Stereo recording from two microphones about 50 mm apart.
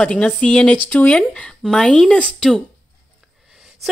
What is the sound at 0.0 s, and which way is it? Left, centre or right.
Speech, left.